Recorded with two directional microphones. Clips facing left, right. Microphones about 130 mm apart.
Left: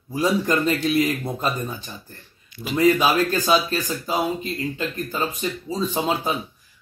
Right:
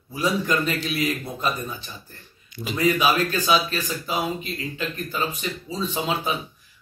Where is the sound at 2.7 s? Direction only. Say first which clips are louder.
Left 3 dB; 40° left (ahead or behind).